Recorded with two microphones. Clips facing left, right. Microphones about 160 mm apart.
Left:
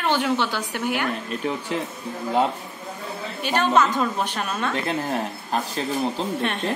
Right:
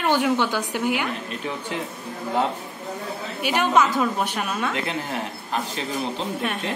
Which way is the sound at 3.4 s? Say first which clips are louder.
Even; 10° right (ahead or behind).